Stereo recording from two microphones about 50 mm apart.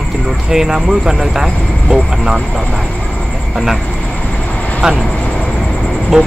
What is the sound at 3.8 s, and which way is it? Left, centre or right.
Vehicle, left.